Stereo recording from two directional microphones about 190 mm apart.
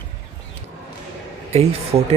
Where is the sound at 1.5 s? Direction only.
35° right (ahead or behind).